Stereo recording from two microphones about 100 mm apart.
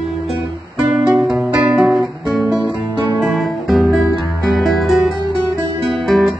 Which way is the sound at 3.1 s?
Centre (ahead or behind).